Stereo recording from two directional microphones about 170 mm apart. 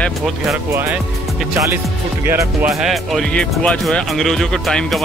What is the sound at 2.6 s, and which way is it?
Speech, centre (ahead or behind).